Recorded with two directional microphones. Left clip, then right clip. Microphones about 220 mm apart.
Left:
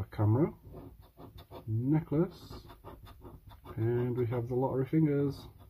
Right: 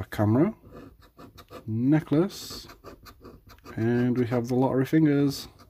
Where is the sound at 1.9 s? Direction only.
35° right (ahead or behind).